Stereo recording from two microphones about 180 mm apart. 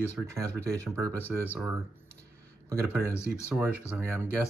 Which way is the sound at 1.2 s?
10° left (ahead or behind).